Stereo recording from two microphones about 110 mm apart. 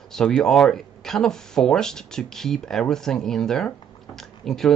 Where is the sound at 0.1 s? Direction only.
5° left (ahead or behind).